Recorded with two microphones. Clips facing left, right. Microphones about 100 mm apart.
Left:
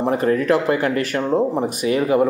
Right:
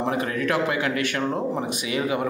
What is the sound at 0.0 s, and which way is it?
Speech, 45° left (ahead or behind).